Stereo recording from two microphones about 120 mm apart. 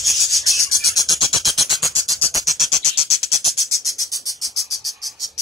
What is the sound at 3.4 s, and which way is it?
Music, centre (ahead or behind).